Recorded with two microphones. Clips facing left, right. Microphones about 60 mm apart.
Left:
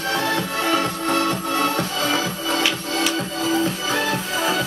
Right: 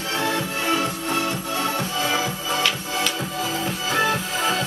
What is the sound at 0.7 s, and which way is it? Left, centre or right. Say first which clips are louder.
Music: left 3 dB; left.